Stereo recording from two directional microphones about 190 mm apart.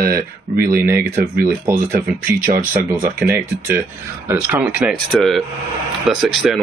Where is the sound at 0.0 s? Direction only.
50° right (ahead or behind).